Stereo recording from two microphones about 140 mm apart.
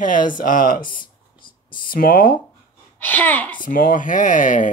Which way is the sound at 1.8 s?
90° left.